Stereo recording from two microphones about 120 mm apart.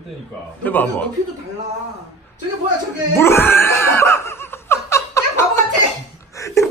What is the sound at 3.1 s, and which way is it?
Laughter, 20° left (ahead or behind).